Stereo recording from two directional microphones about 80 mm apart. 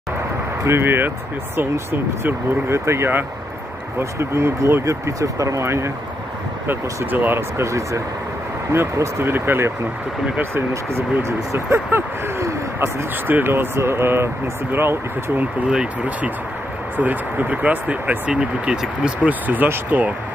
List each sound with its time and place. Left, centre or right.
0.7 s speech: right
6.7 s speech: right
15.7 s speech: centre